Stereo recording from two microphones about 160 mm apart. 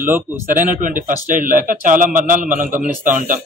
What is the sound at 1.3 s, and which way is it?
A man's voice, 55° right (ahead or behind).